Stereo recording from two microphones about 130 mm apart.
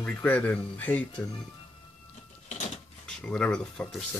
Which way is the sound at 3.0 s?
10° left (ahead or behind).